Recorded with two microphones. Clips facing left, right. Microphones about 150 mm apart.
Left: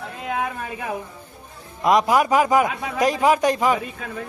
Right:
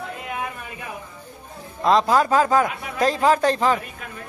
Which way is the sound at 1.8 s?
15° left (ahead or behind).